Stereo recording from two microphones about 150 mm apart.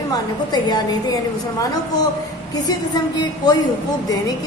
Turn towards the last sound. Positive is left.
turn(degrees=25)  # may be behind; listen again after turning